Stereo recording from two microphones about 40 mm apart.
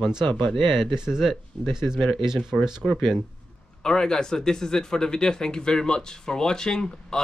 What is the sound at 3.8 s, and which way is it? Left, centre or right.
Speech, centre.